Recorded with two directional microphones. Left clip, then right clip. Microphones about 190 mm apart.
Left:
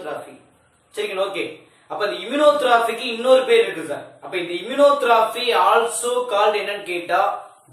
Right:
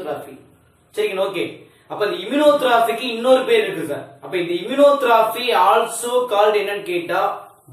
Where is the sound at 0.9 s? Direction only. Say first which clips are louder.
Right 3 dB; centre (ahead or behind).